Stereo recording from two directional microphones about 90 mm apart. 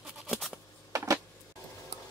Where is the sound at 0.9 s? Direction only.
40° right (ahead or behind).